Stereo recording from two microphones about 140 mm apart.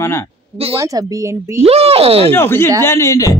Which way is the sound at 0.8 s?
25° right (ahead or behind).